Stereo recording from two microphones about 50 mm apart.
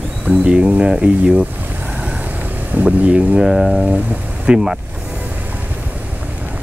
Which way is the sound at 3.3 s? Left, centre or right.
Centre.